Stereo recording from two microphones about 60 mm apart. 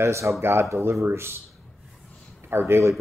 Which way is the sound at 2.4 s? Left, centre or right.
Right.